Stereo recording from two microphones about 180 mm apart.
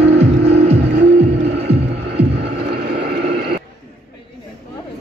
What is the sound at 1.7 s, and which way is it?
Music, 35° right (ahead or behind).